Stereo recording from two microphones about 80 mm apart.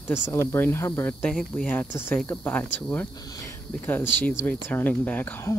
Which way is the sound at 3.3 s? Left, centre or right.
Left.